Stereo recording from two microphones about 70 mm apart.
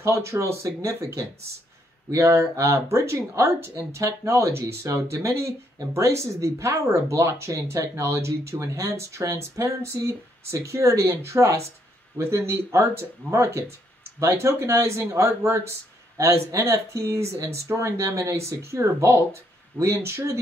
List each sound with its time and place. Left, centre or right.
0.0 s speech: right